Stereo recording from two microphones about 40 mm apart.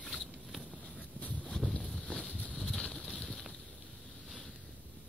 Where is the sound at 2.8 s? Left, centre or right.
Left.